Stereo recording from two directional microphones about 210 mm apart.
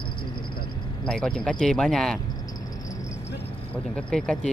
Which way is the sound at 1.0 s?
5° left (ahead or behind).